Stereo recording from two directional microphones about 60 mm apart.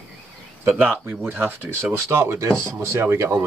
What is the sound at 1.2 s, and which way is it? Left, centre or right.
Speech, right.